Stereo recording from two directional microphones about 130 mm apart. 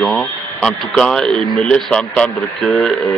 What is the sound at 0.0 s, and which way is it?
Speech, centre (ahead or behind).